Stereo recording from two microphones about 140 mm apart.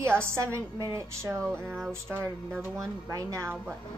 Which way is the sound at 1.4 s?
5° left (ahead or behind).